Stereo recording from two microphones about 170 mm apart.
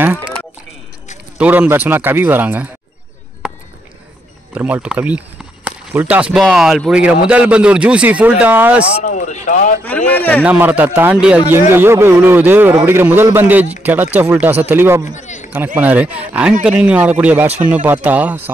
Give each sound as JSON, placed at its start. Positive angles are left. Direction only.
{"t": 0.0, "sound": "a sound", "side_deg": -10}
{"t": 1.4, "sound": "speech", "side_deg": -10}
{"t": 4.6, "sound": "speech", "side_deg": -10}
{"t": 9.0, "sound": "speech", "side_deg": 45}
{"t": 9.8, "sound": "speech", "side_deg": 10}
{"t": 10.4, "sound": "speech", "side_deg": -10}
{"t": 15.1, "sound": "a sound", "side_deg": 45}
{"t": 15.5, "sound": "speech", "side_deg": -10}